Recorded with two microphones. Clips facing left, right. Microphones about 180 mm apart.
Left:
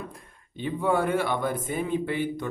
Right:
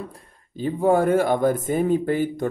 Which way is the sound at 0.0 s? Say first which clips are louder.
Right 3 dB; 35° right (ahead or behind).